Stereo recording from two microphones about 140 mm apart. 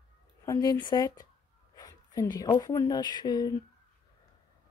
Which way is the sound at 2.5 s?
25° left (ahead or behind).